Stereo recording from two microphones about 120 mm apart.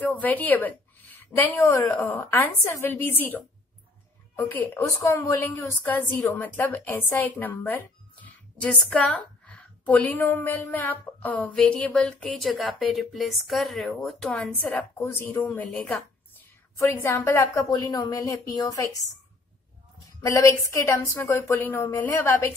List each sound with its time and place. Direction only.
0.0 s a woman's voice: 15° left (ahead or behind)
14.5 s a woman's voice: 15° left (ahead or behind)
16.8 s a woman's voice: 20° left (ahead or behind)
20.2 s a woman's voice: 25° left (ahead or behind)